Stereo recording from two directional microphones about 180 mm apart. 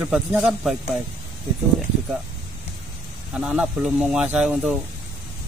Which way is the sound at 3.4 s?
5° right (ahead or behind).